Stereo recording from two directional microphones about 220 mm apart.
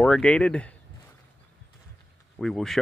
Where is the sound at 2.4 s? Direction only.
Centre (ahead or behind).